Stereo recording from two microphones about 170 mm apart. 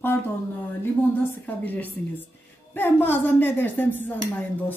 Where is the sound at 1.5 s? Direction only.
10° left (ahead or behind).